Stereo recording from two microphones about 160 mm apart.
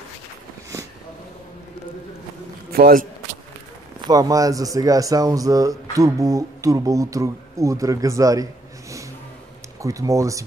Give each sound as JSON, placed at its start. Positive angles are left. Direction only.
{"t": 2.7, "sound": "a man's voice", "side_deg": -65}
{"t": 4.1, "sound": "speech", "side_deg": -20}
{"t": 9.8, "sound": "speech", "side_deg": -20}